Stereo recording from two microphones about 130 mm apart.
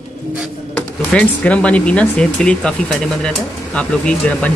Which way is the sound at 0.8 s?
10° left (ahead or behind).